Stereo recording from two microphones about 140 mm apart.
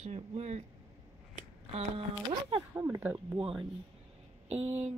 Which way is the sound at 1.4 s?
45° right (ahead or behind).